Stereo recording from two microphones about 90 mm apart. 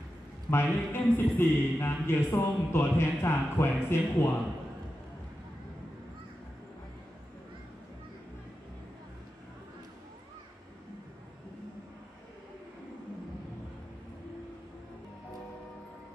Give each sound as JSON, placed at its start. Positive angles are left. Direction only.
{"t": 0.5, "sound": "speech", "side_deg": 25}